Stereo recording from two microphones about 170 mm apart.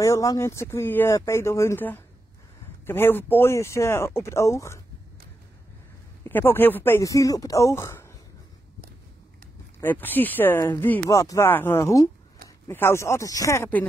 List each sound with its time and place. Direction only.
0.0 s speech: 20° left (ahead or behind)
6.2 s speech: 10° left (ahead or behind)
9.8 s speech: 10° left (ahead or behind)